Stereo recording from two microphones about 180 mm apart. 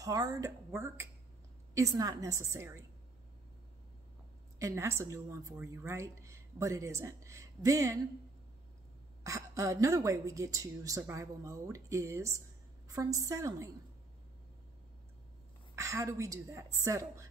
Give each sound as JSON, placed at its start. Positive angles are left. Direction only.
{"t": 0.0, "sound": "speech", "side_deg": -20}
{"t": 4.6, "sound": "speech", "side_deg": -15}
{"t": 9.2, "sound": "speech", "side_deg": -15}
{"t": 15.7, "sound": "speech", "side_deg": -15}